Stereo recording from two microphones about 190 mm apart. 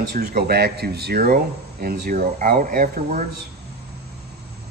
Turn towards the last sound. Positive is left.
turn(degrees=-45)  # may be behind; listen again after turning